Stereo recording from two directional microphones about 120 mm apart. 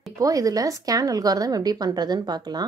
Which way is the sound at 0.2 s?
30° right (ahead or behind).